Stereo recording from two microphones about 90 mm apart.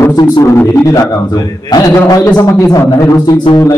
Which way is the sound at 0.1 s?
50° left (ahead or behind).